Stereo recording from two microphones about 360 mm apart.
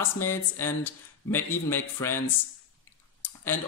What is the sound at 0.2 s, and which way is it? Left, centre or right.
Speech, centre.